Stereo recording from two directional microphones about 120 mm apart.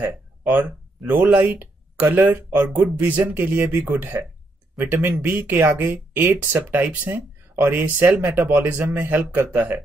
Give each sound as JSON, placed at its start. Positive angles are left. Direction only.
{"t": 0.0, "sound": "speech", "side_deg": -15}